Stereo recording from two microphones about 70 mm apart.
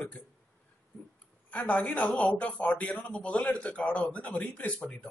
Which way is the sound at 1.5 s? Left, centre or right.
Centre.